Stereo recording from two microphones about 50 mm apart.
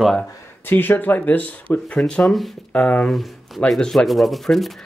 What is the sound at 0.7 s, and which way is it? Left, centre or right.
Speech, left.